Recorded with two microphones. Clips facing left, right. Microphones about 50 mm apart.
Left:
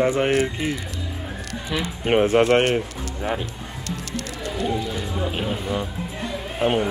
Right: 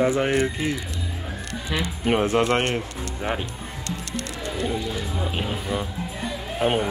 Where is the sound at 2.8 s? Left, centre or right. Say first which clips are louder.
Left 2 dB; centre.